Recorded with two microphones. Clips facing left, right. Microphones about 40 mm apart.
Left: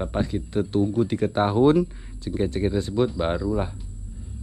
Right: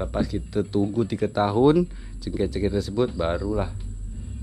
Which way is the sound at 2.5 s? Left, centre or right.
Left.